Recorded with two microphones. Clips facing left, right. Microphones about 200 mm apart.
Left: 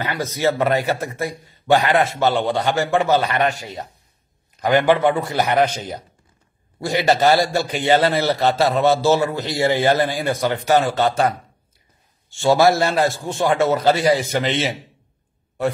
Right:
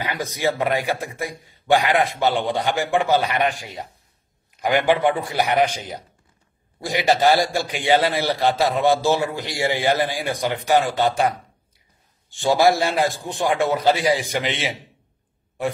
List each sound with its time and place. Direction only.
0.0 s a man's voice: 15° right (ahead or behind)